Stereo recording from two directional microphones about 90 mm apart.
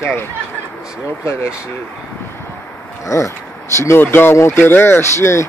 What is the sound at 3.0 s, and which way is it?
Speech, 35° left (ahead or behind).